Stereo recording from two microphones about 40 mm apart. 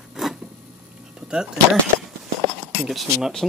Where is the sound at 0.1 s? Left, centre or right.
Centre.